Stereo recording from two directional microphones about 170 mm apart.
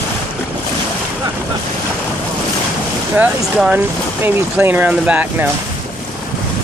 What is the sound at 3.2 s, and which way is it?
Speech, 5° right (ahead or behind).